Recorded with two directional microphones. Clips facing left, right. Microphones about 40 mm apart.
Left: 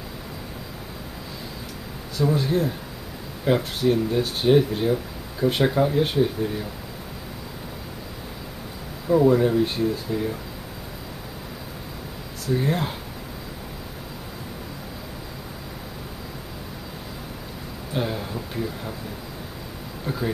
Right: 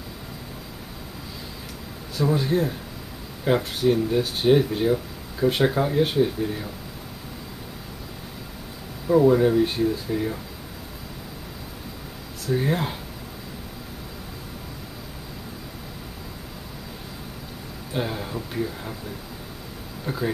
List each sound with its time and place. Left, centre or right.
2.1 s speech: centre
9.0 s speech: centre
10.1 s speech: centre
12.4 s speech: centre
17.9 s speech: centre
20.1 s speech: centre